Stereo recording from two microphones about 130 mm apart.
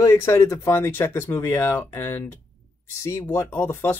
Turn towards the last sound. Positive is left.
turn(degrees=20)  # may be behind; listen again after turning